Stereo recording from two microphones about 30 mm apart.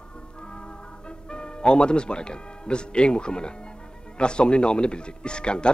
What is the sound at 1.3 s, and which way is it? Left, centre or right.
Speech, left.